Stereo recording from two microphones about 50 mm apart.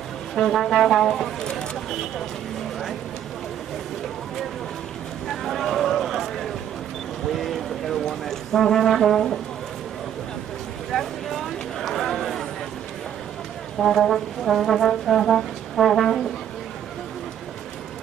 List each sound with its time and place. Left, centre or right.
0.3 s speech: centre
5.3 s a sound: centre
7.3 s speech: centre
8.3 s brass instrument: centre
10.9 s a sound: centre
13.8 s brass instrument: centre